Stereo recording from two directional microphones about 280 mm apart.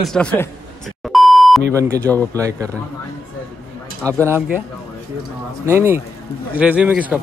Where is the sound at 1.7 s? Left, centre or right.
Centre.